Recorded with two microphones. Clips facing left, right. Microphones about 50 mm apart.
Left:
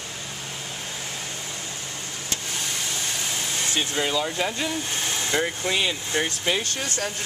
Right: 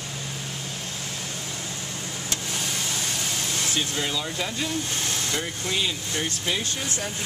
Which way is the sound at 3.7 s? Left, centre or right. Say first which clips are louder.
Left 5 dB; centre.